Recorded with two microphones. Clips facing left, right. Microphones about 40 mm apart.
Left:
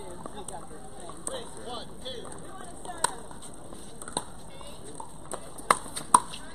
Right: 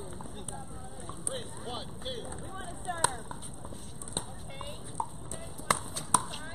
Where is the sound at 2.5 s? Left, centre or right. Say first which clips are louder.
Right 6 dB; right.